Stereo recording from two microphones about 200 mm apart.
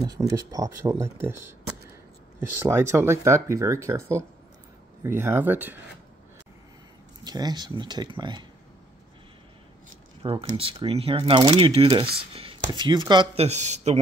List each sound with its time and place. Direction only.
0.0 s speech: 20° right (ahead or behind)
2.5 s speech: 10° right (ahead or behind)
7.2 s speech: 20° right (ahead or behind)
10.2 s speech: 25° right (ahead or behind)